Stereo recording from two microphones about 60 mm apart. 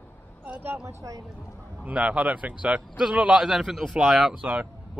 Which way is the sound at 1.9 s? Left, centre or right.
Right.